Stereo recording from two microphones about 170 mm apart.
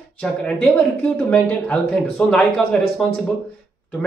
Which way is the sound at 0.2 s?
5° left (ahead or behind).